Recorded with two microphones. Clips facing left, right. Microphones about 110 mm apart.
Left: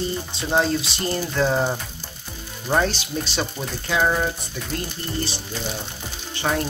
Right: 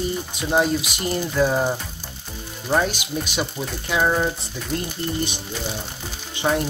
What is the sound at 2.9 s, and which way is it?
Speech, 10° right (ahead or behind).